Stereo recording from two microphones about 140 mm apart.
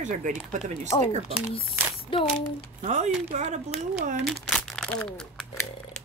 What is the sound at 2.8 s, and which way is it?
Speech, 60° right (ahead or behind).